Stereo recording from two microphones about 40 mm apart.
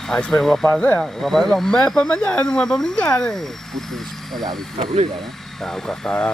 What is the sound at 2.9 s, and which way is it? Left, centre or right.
Speech, left.